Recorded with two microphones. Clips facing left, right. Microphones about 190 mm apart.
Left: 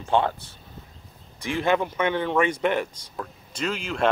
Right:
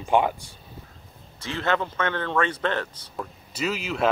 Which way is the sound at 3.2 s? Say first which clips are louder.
Right 1 dB; 5° right (ahead or behind).